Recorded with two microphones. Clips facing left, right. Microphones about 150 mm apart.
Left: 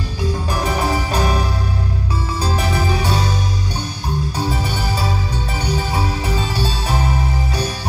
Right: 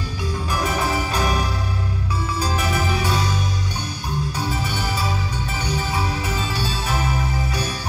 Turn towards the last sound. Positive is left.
turn(degrees=30)  # may be behind; listen again after turning